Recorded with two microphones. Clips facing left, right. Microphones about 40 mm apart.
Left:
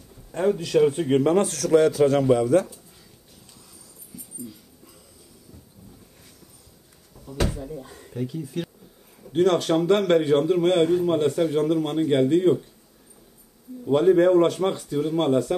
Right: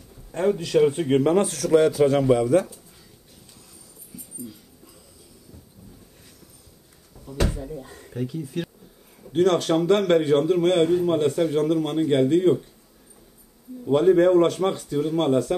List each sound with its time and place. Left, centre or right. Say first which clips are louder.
0.3 s a man's voice: even; centre
7.2 s a sound: even; centre
8.1 s a man's voice: right 1 dB; centre
13.8 s a man's voice: even; centre